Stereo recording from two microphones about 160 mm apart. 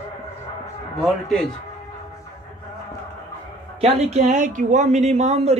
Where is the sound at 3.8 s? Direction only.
40° right (ahead or behind).